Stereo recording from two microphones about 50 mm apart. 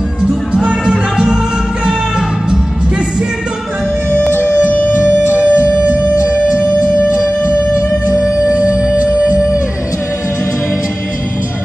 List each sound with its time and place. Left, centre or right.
0.7 s music: centre
5.3 s music: left
6.1 s music: left
8.2 s music: right